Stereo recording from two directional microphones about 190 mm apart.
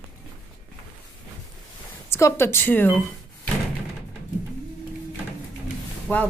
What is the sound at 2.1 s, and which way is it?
A woman's voice, 15° left (ahead or behind).